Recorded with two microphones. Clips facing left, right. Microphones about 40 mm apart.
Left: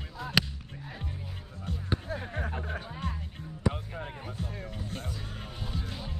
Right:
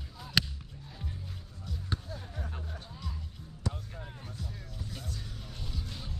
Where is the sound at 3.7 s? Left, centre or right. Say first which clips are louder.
Left 6 dB; left.